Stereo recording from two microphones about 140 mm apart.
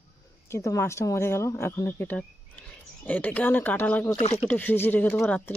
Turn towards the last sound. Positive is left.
turn(degrees=15)  # may be behind; listen again after turning